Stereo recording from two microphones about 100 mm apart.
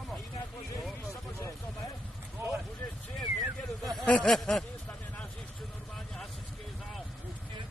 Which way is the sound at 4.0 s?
5° left (ahead or behind).